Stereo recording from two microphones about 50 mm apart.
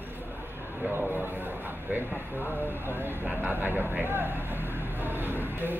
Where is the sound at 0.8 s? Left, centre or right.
Right.